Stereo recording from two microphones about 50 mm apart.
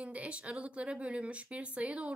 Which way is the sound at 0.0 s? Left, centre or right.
Right.